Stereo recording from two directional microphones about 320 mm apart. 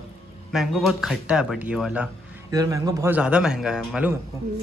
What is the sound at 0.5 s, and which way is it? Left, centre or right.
Speech, centre.